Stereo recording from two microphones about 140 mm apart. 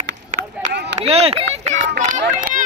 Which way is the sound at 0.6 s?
50° right (ahead or behind).